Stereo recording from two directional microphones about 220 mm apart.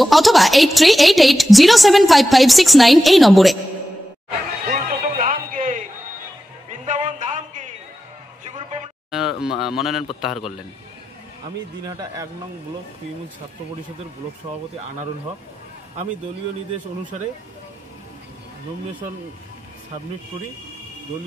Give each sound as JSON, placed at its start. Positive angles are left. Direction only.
{"t": 0.0, "sound": "a woman's voice", "side_deg": 0}
{"t": 4.6, "sound": "music", "side_deg": -40}
{"t": 6.7, "sound": "a sound", "side_deg": -35}
{"t": 9.1, "sound": "a woman's voice", "side_deg": 0}
{"t": 11.8, "sound": "speech", "side_deg": -15}